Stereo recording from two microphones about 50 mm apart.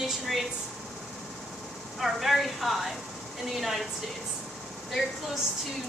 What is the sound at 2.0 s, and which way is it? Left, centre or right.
A woman's voice, centre.